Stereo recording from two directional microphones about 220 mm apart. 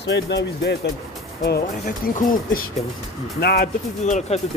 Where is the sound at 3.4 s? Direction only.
45° left (ahead or behind).